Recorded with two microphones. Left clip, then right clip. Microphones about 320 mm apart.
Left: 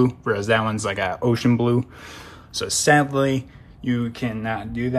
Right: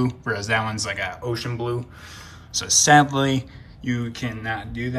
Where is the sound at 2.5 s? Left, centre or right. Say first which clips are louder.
Right 3 dB; centre.